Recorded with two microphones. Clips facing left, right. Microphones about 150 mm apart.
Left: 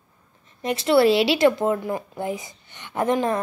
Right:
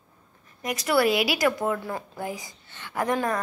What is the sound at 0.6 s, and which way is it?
A woman's voice, 25° left (ahead or behind).